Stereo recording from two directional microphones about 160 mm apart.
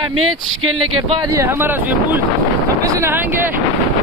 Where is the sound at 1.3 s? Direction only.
15° right (ahead or behind).